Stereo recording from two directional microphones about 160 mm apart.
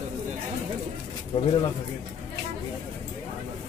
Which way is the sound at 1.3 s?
35° left (ahead or behind).